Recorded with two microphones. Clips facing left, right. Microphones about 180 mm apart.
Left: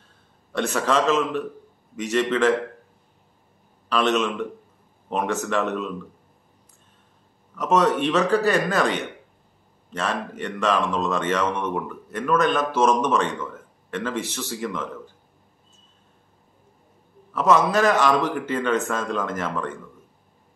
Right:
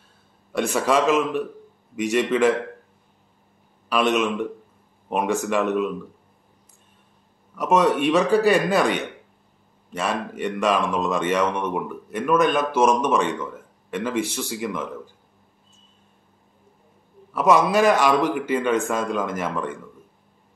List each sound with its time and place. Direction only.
0.5 s speech: 10° right (ahead or behind)
3.9 s speech: 10° right (ahead or behind)
7.5 s speech: 10° right (ahead or behind)
17.3 s speech: 10° right (ahead or behind)